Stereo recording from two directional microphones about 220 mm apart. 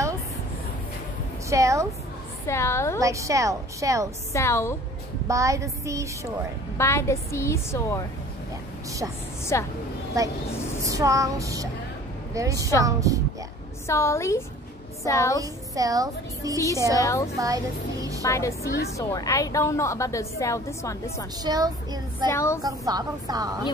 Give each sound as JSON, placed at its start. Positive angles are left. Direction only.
{"t": 1.5, "sound": "a woman's voice", "side_deg": -15}
{"t": 2.4, "sound": "a woman's voice", "side_deg": 10}
{"t": 3.0, "sound": "a woman's voice", "side_deg": -15}
{"t": 4.3, "sound": "a woman's voice", "side_deg": 10}
{"t": 5.3, "sound": "a woman's voice", "side_deg": -15}
{"t": 6.8, "sound": "a woman's voice", "side_deg": 10}
{"t": 9.4, "sound": "a woman's voice", "side_deg": 10}
{"t": 10.2, "sound": "a woman's voice", "side_deg": -15}
{"t": 13.8, "sound": "a woman's voice", "side_deg": 10}
{"t": 15.4, "sound": "a woman's voice", "side_deg": -15}
{"t": 16.9, "sound": "a woman's voice", "side_deg": 15}
{"t": 21.4, "sound": "a woman's voice", "side_deg": -15}
{"t": 22.3, "sound": "a woman's voice", "side_deg": 10}
{"t": 22.6, "sound": "a woman's voice", "side_deg": -15}